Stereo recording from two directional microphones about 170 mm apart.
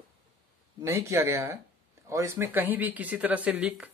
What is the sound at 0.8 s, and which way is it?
Speech, 15° right (ahead or behind).